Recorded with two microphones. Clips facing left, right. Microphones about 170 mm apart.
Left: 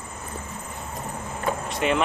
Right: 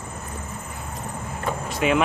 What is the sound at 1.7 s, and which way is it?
Speech, 5° right (ahead or behind).